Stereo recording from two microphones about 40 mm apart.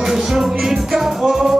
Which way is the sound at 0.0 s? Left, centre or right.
Centre.